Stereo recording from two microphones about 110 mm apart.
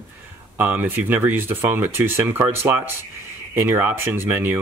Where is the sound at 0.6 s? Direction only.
20° right (ahead or behind).